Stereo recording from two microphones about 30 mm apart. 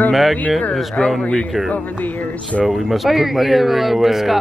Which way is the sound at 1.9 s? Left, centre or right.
Left.